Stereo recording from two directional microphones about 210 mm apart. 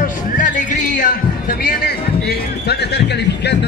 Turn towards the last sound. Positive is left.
turn(degrees=50)  # may be behind; listen again after turning